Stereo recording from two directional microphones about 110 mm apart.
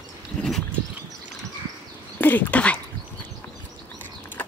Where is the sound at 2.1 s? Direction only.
15° left (ahead or behind).